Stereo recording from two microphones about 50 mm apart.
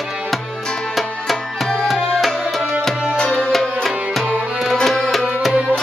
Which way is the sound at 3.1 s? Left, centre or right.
Left.